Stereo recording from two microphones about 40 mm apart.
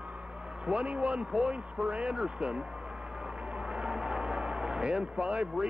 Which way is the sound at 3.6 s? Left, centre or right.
Right.